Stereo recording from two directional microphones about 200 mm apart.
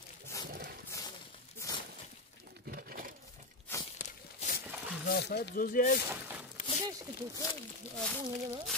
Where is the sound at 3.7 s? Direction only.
10° left (ahead or behind).